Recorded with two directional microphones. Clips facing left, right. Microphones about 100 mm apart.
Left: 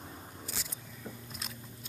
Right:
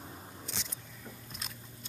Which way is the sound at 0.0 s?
Centre (ahead or behind).